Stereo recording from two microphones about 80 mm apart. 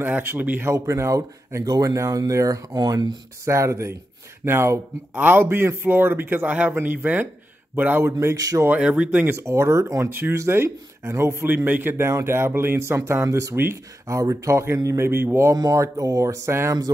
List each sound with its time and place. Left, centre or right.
0.0 s a man's voice: right
0.7 s speech: right
3.4 s a man's voice: right
8.4 s speech: right
8.6 s speech: centre
9.2 s a man's voice: right
15.5 s speech: right